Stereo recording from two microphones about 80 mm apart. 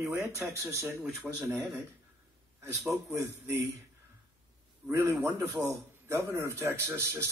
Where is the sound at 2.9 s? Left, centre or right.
Right.